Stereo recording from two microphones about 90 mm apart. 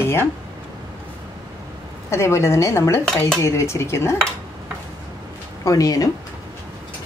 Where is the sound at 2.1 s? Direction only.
30° left (ahead or behind).